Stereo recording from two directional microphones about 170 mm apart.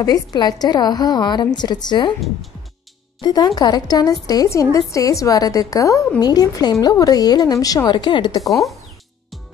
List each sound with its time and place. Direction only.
0.0 s a woman's voice: 25° left (ahead or behind)
3.2 s a woman's voice: 25° left (ahead or behind)
8.5 s speech: centre (ahead or behind)